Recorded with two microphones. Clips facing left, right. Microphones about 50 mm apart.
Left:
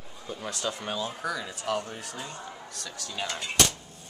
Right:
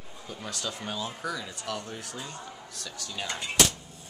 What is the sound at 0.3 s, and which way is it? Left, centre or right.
Speech, centre.